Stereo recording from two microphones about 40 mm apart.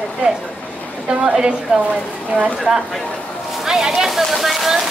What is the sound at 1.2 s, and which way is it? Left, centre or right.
Speech, centre.